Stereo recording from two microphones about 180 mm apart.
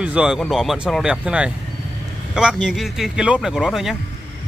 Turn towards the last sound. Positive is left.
turn(degrees=0)  # may be behind; listen again after turning